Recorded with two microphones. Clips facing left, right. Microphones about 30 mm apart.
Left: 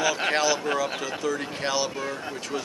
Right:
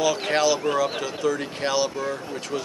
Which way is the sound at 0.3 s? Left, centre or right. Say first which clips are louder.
Right 3 dB; centre.